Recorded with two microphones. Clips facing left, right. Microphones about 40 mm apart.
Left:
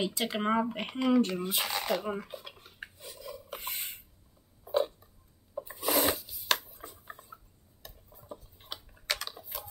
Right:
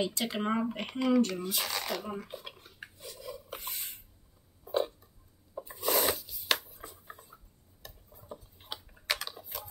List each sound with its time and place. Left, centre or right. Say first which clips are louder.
0.0 s speech: left 1 dB; centre
1.2 s speech: left 1 dB; left
2.2 s speech: even; centre
2.6 s a sound: left 1 dB; centre
3.2 s filing: even; centre
4.6 s a sound: left 2 dB; centre